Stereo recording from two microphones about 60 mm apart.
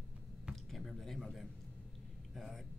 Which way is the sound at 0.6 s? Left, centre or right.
Centre.